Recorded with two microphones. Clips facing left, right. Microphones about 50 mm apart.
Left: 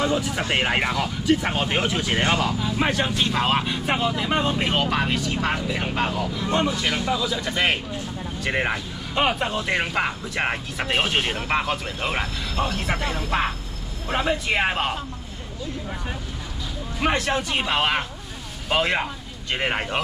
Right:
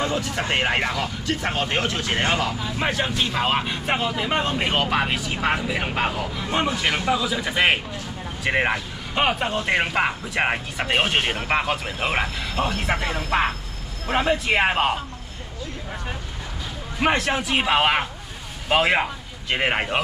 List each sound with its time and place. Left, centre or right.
0.0 s speech: centre
0.4 s speech: centre
17.0 s speech: centre